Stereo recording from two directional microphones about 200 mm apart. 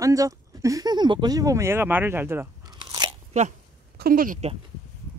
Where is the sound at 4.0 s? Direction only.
45° right (ahead or behind).